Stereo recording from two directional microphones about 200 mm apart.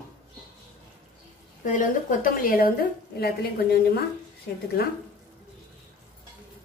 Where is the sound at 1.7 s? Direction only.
40° left (ahead or behind).